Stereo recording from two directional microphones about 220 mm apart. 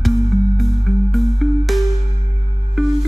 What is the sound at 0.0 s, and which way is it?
Music, centre (ahead or behind).